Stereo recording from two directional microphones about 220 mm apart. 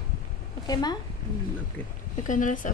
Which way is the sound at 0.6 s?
20° left (ahead or behind).